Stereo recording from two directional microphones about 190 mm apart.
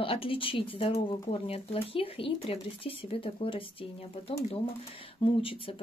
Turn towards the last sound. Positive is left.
turn(degrees=30)  # may be behind; listen again after turning